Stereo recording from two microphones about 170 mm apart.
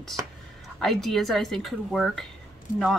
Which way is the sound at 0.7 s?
Centre (ahead or behind).